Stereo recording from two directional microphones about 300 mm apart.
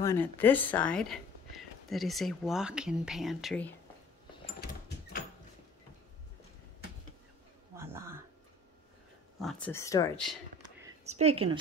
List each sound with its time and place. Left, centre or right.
0.0 s speech: centre
7.7 s a sound: centre
9.4 s speech: centre
11.1 s a woman's voice: right